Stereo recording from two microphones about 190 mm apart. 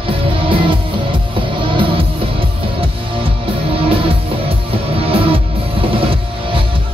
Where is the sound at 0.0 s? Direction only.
30° right (ahead or behind).